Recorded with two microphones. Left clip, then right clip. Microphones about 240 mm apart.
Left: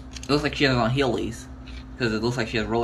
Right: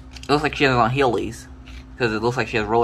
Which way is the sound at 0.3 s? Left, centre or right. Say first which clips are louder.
Right 4 dB; centre.